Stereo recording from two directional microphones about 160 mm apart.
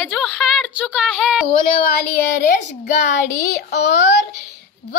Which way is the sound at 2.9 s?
50° left (ahead or behind).